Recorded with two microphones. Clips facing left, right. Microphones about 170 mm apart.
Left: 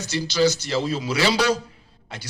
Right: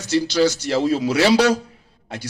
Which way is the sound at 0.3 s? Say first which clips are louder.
Left 2 dB; 60° right (ahead or behind).